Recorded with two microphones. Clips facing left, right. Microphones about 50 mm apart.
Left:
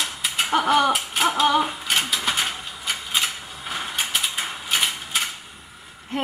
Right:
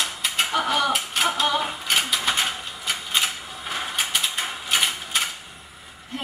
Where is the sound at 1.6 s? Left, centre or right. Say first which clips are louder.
Left 2 dB; centre.